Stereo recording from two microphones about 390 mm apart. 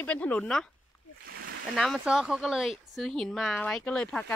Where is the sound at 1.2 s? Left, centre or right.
Right.